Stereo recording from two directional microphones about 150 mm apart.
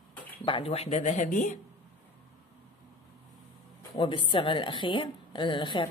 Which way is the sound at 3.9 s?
35° left (ahead or behind).